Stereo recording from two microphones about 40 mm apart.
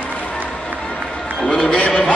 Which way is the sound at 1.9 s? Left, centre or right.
Left.